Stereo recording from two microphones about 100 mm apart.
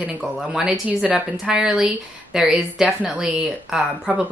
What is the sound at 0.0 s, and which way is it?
Speech, 5° right (ahead or behind).